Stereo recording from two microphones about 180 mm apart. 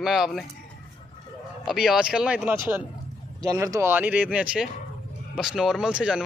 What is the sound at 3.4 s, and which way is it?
A man's voice, 20° right (ahead or behind).